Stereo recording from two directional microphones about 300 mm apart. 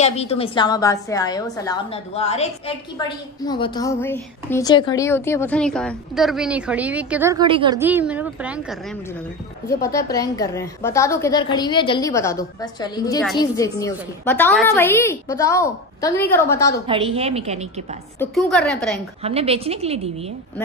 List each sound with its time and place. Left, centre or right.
0.0 s a woman's voice: left; by 8.7 s centre
9.7 s a woman's voice: centre
16.8 s a woman's voice: centre
18.2 s a woman's voice: centre
19.2 s a woman's voice: centre